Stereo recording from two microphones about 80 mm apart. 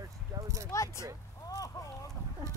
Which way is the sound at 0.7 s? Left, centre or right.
Left.